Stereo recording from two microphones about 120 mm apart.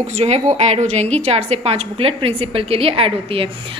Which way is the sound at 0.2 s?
65° right (ahead or behind).